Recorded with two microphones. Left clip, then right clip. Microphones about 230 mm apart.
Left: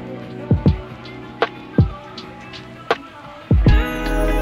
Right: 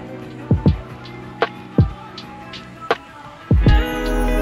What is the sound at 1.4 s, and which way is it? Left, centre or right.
Music, centre.